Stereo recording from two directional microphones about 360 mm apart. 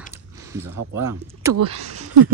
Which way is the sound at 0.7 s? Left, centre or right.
Right.